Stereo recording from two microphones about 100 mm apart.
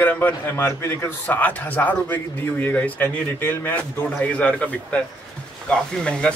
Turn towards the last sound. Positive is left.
turn(degrees=10)  # may be behind; listen again after turning